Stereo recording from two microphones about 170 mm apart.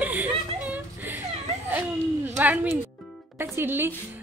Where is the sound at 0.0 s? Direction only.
10° right (ahead or behind).